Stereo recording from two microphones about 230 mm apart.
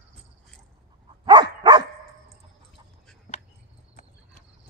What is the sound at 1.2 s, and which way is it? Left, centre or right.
Dog, centre.